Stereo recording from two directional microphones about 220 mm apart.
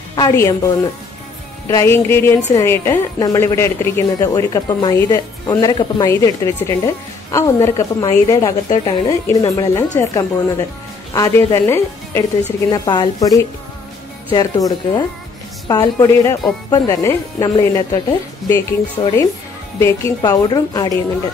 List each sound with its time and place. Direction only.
0.1 s a woman's voice: 15° left (ahead or behind)